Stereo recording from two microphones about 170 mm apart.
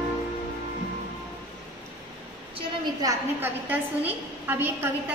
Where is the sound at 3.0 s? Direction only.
15° right (ahead or behind).